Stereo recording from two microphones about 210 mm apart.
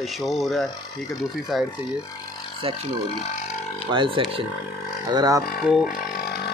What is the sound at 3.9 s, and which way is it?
Speech, 25° right (ahead or behind).